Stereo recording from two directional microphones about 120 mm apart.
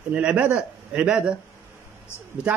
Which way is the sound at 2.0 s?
20° left (ahead or behind).